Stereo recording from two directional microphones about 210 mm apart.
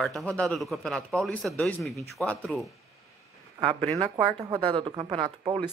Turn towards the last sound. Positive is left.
turn(degrees=-20)  # may be behind; listen again after turning